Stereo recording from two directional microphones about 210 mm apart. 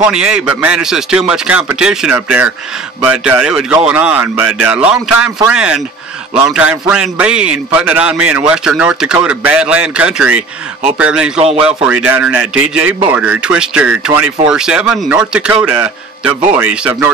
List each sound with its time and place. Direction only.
0.0 s a man's voice: 5° right (ahead or behind)
11.3 s speech: 30° right (ahead or behind)
11.6 s a man's voice: 5° right (ahead or behind)